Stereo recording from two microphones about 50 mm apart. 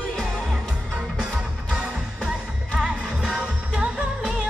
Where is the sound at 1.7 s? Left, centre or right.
Centre.